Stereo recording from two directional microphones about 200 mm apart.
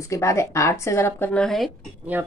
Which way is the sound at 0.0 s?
15° left (ahead or behind).